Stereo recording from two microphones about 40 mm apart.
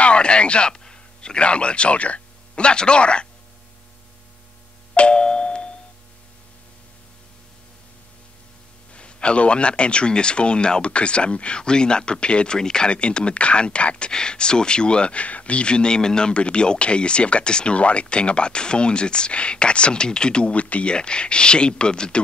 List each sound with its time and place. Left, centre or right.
0.0 s a man's voice: left
4.9 s doorbell: left
8.9 s a man's voice: left